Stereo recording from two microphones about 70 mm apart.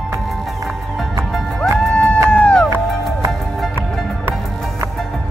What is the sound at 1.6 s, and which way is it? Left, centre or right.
Music, centre.